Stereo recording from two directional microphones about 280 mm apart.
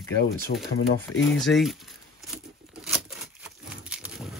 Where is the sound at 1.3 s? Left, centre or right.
Centre.